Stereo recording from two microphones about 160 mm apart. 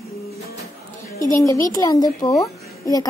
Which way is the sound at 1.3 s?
20° left (ahead or behind).